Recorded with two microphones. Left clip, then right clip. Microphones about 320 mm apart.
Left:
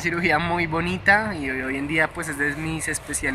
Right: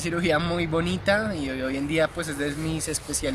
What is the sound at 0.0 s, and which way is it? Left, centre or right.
Speech, centre.